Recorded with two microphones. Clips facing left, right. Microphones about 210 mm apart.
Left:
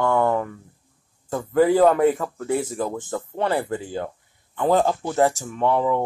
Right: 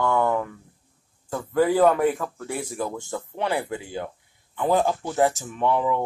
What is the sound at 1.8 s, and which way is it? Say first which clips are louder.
Speech: left 2 dB; 25° left (ahead or behind).